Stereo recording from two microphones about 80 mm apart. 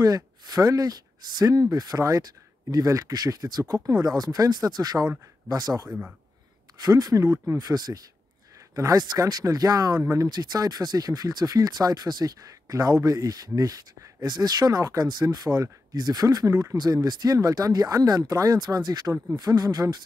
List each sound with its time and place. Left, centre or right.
0.0 s speech: right
5.9 s speech: centre
6.8 s speech: right